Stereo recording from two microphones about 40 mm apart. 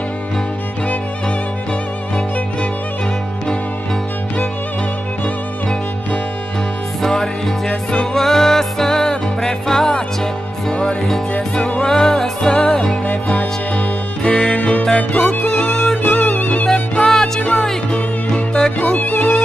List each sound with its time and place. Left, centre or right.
7.0 s music: centre
10.7 s music: left
11.8 s music: centre
13.0 s music: left
16.0 s music: left
17.0 s music: centre
18.9 s music: left